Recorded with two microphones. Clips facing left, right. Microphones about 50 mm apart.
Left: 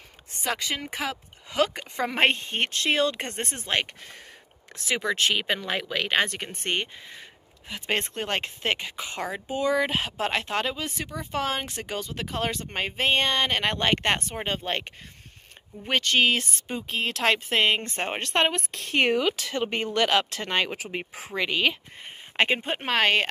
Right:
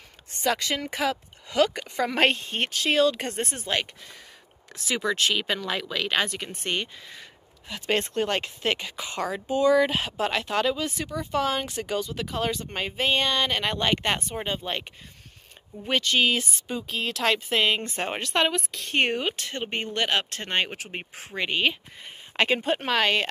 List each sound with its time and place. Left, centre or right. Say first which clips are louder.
0.4 s a woman's voice: right 3 dB; centre
2.3 s speech: left 1 dB; left
7.7 s speech: right 3 dB; left
18.7 s speech: left 1 dB; left
20.8 s speech: left 3 dB; centre
21.4 s speech: even; left
22.0 s a woman's voice: left 1 dB; left